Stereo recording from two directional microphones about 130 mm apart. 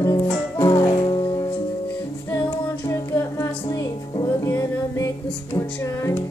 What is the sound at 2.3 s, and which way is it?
A capella, 25° left (ahead or behind).